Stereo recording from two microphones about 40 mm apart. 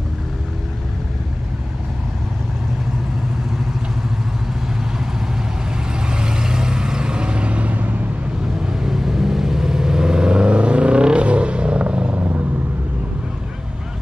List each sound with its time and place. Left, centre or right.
5.9 s vehicle: right
8.5 s vehicle: centre
12.1 s vehicle: right